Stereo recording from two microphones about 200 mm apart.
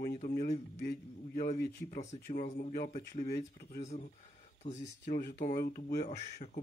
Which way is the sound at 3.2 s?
50° left (ahead or behind).